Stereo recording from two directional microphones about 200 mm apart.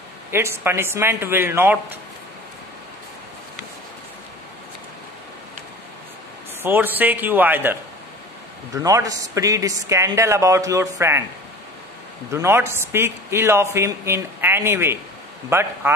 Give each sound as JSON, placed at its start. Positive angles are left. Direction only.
{"t": 0.3, "sound": "a man's voice", "side_deg": -10}
{"t": 6.6, "sound": "a man's voice", "side_deg": -10}
{"t": 8.7, "sound": "a man's voice", "side_deg": -15}
{"t": 12.3, "sound": "a man's voice", "side_deg": -15}